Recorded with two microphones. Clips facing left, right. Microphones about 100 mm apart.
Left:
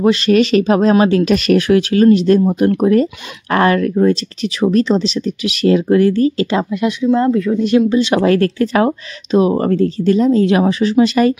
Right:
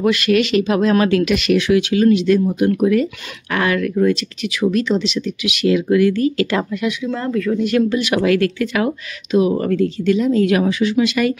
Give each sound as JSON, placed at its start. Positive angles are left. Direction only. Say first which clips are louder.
{"t": 0.0, "sound": "speech", "louder": "left 4 dB", "side_deg": 35}
{"t": 6.8, "sound": "speech", "louder": "left 7 dB", "side_deg": 35}